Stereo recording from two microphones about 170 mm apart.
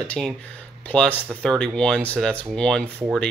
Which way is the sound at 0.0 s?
5° left (ahead or behind).